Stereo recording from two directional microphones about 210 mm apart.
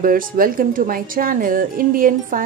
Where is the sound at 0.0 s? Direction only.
40° right (ahead or behind).